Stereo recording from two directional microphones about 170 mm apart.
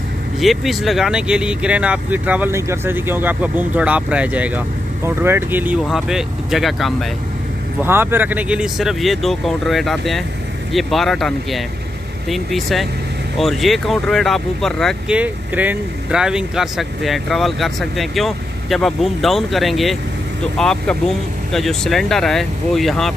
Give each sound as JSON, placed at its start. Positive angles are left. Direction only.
{"t": 0.4, "sound": "speech", "side_deg": 0}
{"t": 7.8, "sound": "speech", "side_deg": -15}